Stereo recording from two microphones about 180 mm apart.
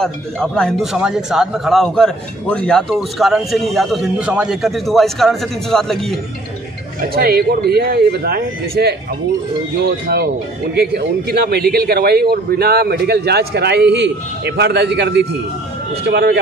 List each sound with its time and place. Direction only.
0.0 s speech: 5° left (ahead or behind)
7.0 s a man's voice: 60° right (ahead or behind)
10.0 s a man's voice: 60° right (ahead or behind)